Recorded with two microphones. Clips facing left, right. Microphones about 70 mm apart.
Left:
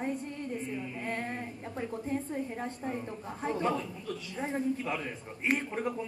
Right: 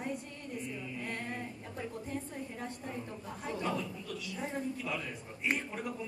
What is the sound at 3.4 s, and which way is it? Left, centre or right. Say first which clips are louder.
A man's voice: left 5 dB; left.